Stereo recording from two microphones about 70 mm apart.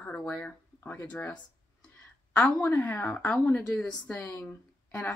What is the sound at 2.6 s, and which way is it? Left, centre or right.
A woman's voice, left.